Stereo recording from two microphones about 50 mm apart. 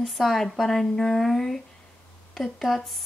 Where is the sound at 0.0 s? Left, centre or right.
Centre.